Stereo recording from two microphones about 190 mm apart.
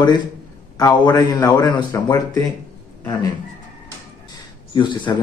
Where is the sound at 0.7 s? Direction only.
20° left (ahead or behind).